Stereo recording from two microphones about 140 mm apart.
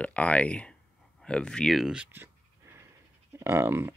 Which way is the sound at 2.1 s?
15° right (ahead or behind).